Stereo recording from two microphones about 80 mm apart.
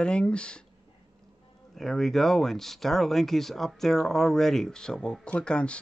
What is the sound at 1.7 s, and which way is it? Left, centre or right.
Speech, centre.